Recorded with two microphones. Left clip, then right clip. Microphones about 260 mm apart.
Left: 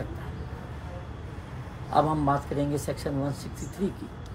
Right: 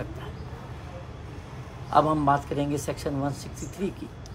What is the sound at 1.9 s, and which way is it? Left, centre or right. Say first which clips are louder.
Speech: right 3 dB; centre.